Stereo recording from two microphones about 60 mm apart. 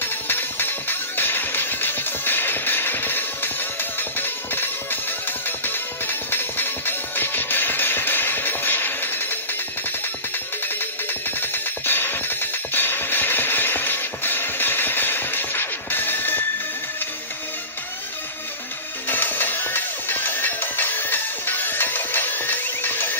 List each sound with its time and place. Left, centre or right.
0.0 s music: left
10.8 s music: left
19.0 s music: left